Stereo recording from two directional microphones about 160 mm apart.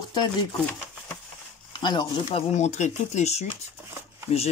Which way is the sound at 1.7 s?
25° left (ahead or behind).